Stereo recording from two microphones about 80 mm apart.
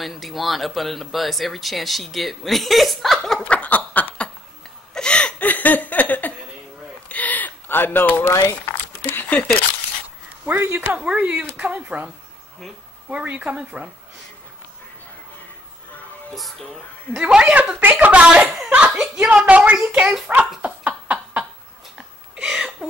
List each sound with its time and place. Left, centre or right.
0.0 s speech: centre
3.4 s snicker: centre
4.9 s laughter: centre
7.1 s a sound: centre
10.4 s a woman's voice: right
10.9 s speech: centre
13.1 s speech: centre
17.3 s a woman's voice: centre
18.9 s speech: centre
20.2 s dog: centre
21.9 s a sound: centre